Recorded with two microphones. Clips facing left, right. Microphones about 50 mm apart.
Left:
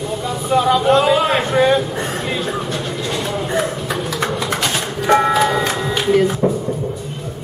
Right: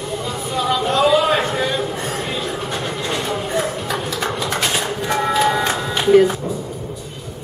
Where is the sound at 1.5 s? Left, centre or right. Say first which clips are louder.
Left 6 dB; left.